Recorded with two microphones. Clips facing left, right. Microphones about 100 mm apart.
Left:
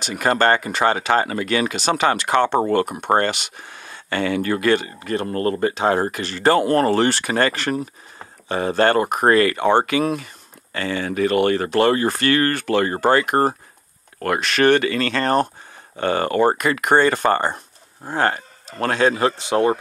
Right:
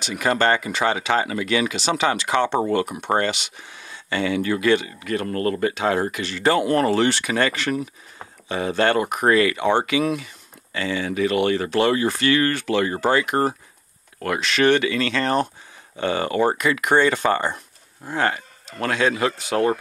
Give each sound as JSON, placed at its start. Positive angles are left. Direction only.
{"t": 0.0, "sound": "speech", "side_deg": 45}